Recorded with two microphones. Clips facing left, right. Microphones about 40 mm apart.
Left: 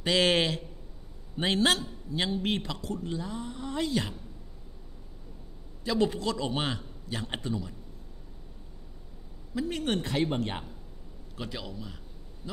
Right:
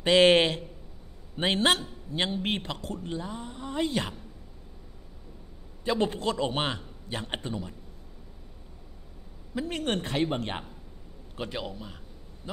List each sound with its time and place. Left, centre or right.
0.0 s a man's voice: right
3.3 s speech: centre
5.9 s a man's voice: right
9.6 s a man's voice: right
11.3 s a man's voice: right